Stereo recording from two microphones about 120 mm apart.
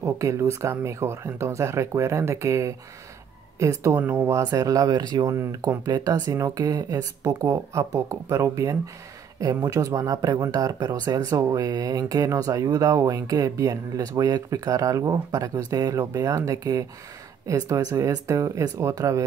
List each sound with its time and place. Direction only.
0.0 s speech: 25° right (ahead or behind)
4.4 s speech: 30° right (ahead or behind)